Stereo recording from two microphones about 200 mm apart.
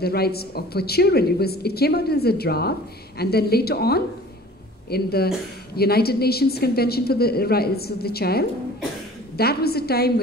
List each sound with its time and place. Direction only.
0.0 s a woman's voice: 50° left (ahead or behind)